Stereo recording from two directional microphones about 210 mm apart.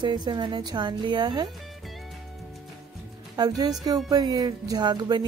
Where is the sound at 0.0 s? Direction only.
20° right (ahead or behind).